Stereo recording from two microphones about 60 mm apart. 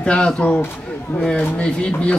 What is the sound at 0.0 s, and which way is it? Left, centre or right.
A woman's voice, centre.